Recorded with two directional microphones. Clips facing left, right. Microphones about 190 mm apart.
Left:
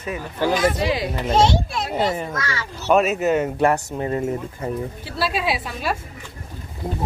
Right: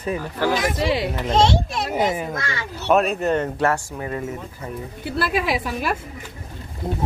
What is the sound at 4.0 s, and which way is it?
Speech, 30° left (ahead or behind).